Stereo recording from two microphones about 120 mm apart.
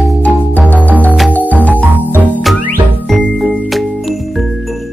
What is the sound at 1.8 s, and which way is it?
Music, 15° right (ahead or behind).